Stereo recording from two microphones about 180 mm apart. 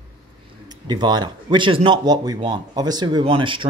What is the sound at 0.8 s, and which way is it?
Speech, 25° right (ahead or behind).